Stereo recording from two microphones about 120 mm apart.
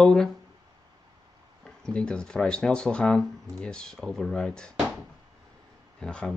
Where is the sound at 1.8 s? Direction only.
5° left (ahead or behind).